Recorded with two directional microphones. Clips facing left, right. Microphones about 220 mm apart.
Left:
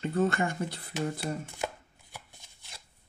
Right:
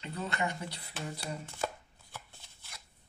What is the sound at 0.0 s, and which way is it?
Speech, 50° left (ahead or behind).